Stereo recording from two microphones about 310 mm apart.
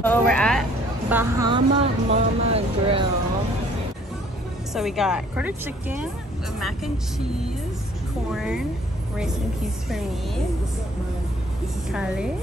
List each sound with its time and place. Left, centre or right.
0.0 s a woman's voice: centre
1.1 s speech: centre
4.7 s a woman's voice: centre
8.3 s a woman's voice: centre
9.8 s a woman's voice: centre
11.9 s a woman's voice: centre